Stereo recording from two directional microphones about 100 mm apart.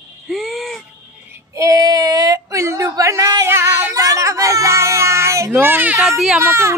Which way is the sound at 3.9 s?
35° right (ahead or behind).